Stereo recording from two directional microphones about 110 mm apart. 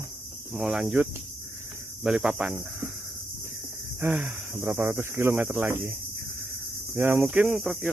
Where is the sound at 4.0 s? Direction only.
15° right (ahead or behind).